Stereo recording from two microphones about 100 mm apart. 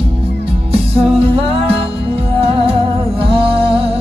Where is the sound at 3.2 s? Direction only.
65° right (ahead or behind).